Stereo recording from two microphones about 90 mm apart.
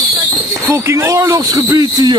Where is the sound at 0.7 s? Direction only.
30° right (ahead or behind); by 2.2 s 45° right (ahead or behind).